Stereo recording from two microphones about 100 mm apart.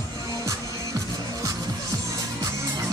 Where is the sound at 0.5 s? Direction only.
35° right (ahead or behind).